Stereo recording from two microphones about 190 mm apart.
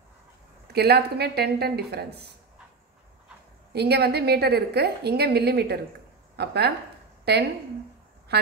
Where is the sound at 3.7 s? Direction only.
60° right (ahead or behind).